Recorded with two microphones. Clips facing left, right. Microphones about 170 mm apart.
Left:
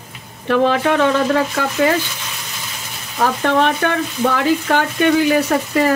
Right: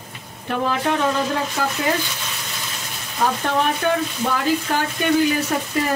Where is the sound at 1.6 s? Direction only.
80° left.